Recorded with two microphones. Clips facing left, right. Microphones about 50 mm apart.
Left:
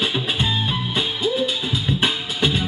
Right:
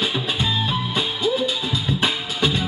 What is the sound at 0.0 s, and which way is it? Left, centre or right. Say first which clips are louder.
Music: left 1 dB; centre.